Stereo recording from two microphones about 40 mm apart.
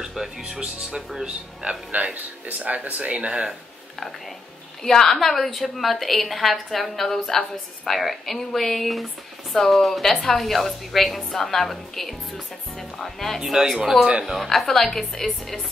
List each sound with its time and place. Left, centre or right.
0.4 s speech: right
2.4 s speech: right
4.8 s a woman's voice: centre
13.4 s a woman's voice: centre